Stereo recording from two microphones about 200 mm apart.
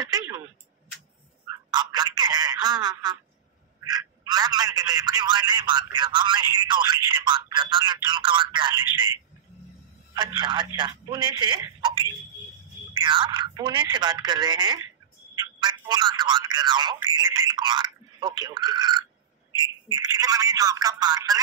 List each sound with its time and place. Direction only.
0.0 s a sound: 20° right (ahead or behind)
1.7 s telephone: 20° right (ahead or behind)
3.8 s speech: 20° right (ahead or behind)